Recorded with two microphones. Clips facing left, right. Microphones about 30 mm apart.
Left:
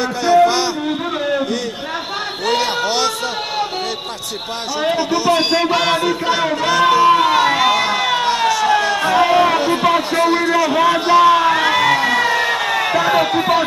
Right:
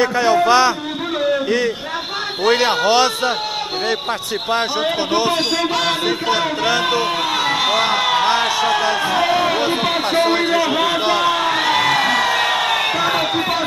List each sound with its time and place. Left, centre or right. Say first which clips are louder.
0.0 s a sound: even; centre
0.5 s music: right 5 dB; centre
2.4 s speech: right 3 dB; centre
4.9 s a man's voice: left 2 dB; centre
5.5 s music: left 3 dB; centre
6.2 s speech: left 1 dB; centre
7.3 s music: left 4 dB; centre
7.7 s run: even; centre
8.7 s speech: left 3 dB; centre
9.6 s a man's voice: left 3 dB; centre
12.4 s crowd: even; right
12.9 s speech: left 3 dB; centre